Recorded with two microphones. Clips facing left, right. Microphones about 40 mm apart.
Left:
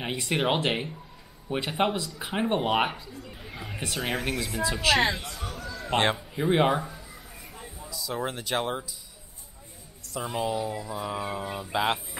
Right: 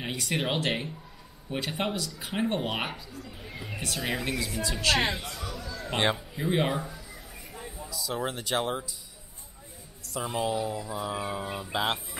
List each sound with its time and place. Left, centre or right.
0.0 s speech: centre
0.3 s speech: centre
5.4 s a sound: left
5.7 s a sound: centre
6.3 s speech: centre
10.0 s speech: centre